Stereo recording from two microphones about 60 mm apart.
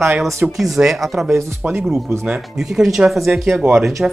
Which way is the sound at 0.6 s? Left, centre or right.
Centre.